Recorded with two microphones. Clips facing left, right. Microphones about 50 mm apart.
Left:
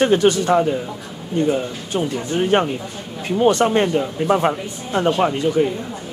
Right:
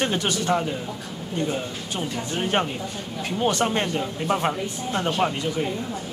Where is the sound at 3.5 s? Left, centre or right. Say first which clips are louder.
Left 8 dB; left.